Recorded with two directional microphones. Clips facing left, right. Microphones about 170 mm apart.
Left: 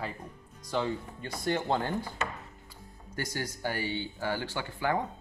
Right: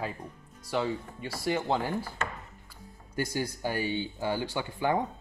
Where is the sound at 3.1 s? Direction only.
10° right (ahead or behind).